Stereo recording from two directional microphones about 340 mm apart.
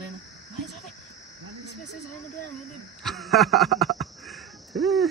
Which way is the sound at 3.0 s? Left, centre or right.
Centre.